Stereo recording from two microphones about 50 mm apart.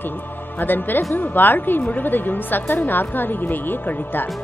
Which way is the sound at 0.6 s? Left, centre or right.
Left.